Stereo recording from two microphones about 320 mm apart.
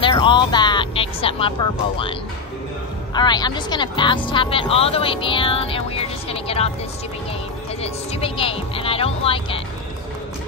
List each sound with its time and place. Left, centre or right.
0.0 s music: centre
3.2 s speech: centre
7.8 s speech: centre